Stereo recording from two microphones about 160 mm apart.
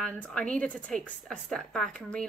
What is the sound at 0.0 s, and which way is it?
A woman's voice, 5° left (ahead or behind).